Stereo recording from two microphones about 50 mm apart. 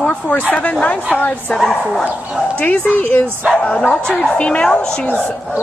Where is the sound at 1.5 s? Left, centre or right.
Centre.